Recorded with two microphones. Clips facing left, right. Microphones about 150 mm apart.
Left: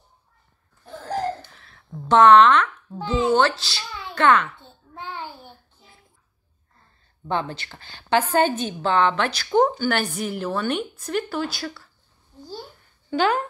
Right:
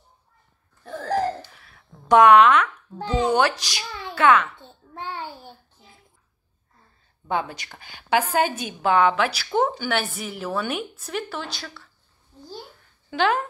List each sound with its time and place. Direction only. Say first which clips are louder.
1.5 s a sound: left 9 dB; 10° right (ahead or behind)
3.3 s speech: left 2 dB; 15° right (ahead or behind)
7.2 s a woman's voice: even; 10° right (ahead or behind)
13.1 s a woman's voice: left 1 dB; centre (ahead or behind)